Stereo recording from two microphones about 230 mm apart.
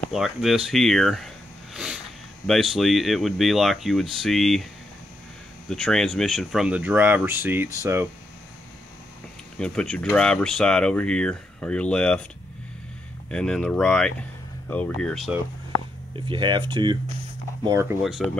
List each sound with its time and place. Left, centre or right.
0.1 s speech: centre
5.7 s speech: centre
9.6 s speech: centre
13.3 s speech: centre
16.3 s speech: right
18.0 s speech: centre